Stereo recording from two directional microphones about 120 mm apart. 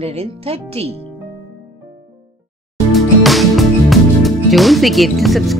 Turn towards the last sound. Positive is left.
turn(degrees=0)  # may be behind; listen again after turning